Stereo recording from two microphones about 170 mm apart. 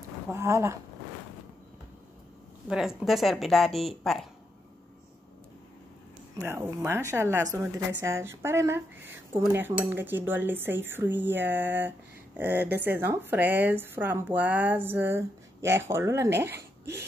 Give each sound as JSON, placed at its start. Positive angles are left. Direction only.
{"t": 0.3, "sound": "a woman's voice", "side_deg": -15}
{"t": 2.7, "sound": "a woman's voice", "side_deg": -5}
{"t": 6.3, "sound": "a woman's voice", "side_deg": -15}